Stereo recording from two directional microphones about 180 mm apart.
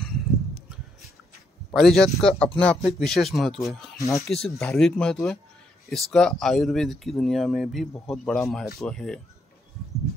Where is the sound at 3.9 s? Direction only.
15° left (ahead or behind).